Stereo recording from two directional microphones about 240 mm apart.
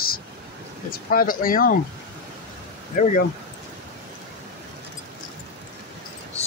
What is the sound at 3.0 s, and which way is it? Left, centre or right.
Speech, left.